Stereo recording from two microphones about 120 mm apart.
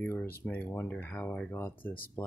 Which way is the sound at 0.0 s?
20° left (ahead or behind).